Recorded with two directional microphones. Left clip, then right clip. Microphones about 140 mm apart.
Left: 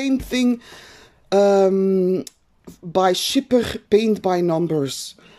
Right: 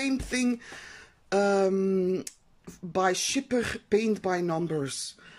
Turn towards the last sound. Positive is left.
turn(degrees=25)  # may be behind; listen again after turning